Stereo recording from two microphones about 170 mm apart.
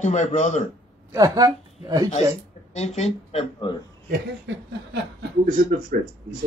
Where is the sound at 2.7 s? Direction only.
40° left (ahead or behind).